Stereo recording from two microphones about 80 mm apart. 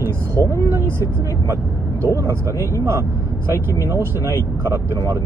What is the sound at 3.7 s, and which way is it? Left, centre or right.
Speech, right.